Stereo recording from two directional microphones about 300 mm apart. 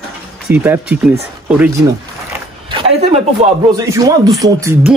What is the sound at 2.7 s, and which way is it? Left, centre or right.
A woman's voice, centre.